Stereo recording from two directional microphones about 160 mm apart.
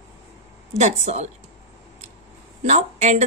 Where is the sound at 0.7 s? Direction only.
45° right (ahead or behind).